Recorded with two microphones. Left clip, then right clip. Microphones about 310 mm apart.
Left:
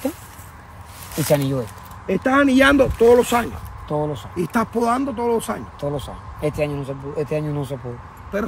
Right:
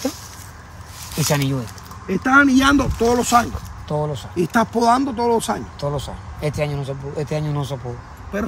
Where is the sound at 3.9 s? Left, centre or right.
Right.